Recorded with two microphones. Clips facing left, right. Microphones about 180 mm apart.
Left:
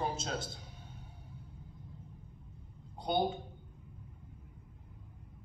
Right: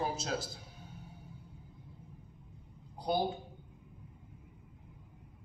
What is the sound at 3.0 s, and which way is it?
Speech, 5° right (ahead or behind).